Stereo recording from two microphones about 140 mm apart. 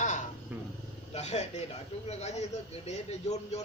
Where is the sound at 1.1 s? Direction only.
50° left (ahead or behind).